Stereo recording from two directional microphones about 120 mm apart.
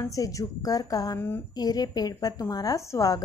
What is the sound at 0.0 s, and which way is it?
A woman's voice, 30° left (ahead or behind).